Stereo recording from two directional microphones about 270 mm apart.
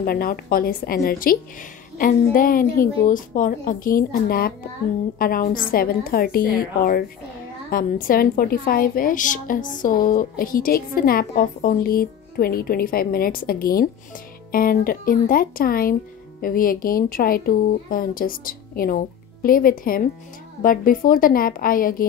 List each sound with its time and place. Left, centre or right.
0.0 s speech: left